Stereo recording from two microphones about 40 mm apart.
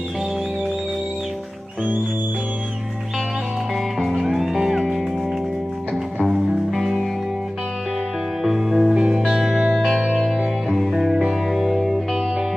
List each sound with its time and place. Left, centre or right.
4.0 s music: centre
6.1 s music: centre
8.5 s music: centre
9.0 s music: centre
9.3 s music: centre